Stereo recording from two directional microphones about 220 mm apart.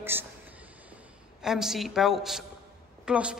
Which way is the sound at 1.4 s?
Centre (ahead or behind).